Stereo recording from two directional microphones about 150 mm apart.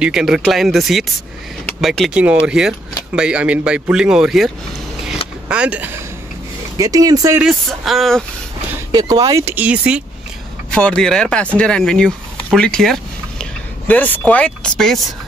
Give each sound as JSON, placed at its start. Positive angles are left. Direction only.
{"t": 0.0, "sound": "speech", "side_deg": -5}
{"t": 5.5, "sound": "speech", "side_deg": -10}
{"t": 6.8, "sound": "speech", "side_deg": -25}
{"t": 7.3, "sound": "speech", "side_deg": 0}
{"t": 8.9, "sound": "speech", "side_deg": -25}
{"t": 10.7, "sound": "speech", "side_deg": 5}